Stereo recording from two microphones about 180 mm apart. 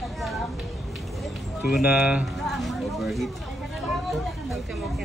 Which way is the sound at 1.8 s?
10° right (ahead or behind).